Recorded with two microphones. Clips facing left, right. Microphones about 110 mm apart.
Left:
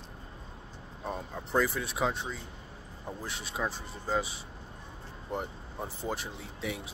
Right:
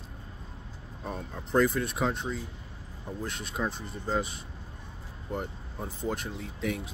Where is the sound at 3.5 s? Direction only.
5° left (ahead or behind).